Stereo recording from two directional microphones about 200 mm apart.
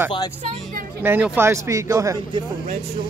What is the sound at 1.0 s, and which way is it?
Speech, 10° right (ahead or behind).